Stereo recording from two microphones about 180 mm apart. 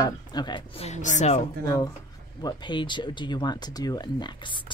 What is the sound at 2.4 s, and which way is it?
Speech, 25° left (ahead or behind).